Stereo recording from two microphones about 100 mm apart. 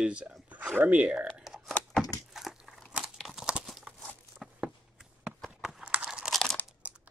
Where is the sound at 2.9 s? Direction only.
5° right (ahead or behind).